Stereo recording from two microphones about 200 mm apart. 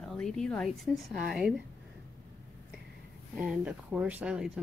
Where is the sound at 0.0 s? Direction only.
5° left (ahead or behind).